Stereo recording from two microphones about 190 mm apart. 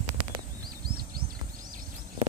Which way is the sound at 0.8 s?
50° right (ahead or behind).